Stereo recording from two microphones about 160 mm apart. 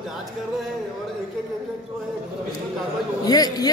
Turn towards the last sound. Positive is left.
turn(degrees=25)  # may be behind; listen again after turning